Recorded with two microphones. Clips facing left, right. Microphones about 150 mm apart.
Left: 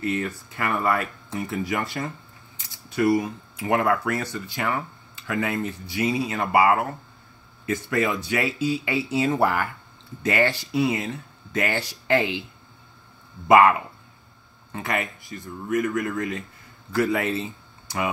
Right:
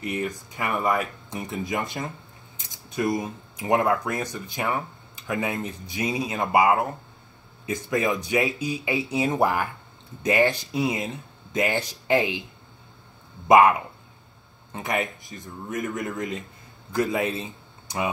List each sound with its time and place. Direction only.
0.0 s speech: 15° right (ahead or behind)
13.5 s speech: 20° right (ahead or behind)